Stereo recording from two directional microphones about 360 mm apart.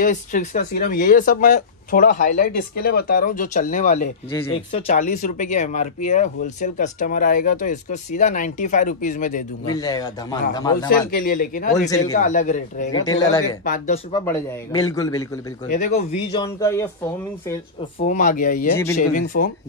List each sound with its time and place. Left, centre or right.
0.0 s speech: left
9.7 s speech: centre
10.9 s speech: left
13.0 s speech: centre
13.7 s speech: left
15.7 s speech: centre
18.0 s speech: left